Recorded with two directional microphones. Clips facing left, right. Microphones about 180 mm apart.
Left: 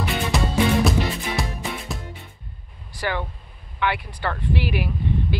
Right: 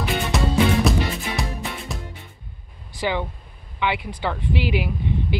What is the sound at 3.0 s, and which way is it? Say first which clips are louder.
Speech: right 2 dB; 15° right (ahead or behind).